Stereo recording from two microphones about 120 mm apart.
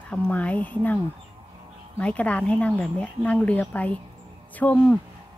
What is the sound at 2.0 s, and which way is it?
A woman's voice, 10° left (ahead or behind).